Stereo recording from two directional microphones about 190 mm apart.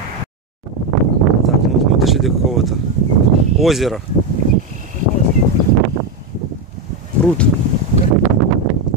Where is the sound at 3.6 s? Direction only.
Centre (ahead or behind).